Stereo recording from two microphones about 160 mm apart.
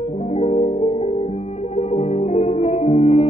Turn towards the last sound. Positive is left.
turn(degrees=40)  # may be behind; listen again after turning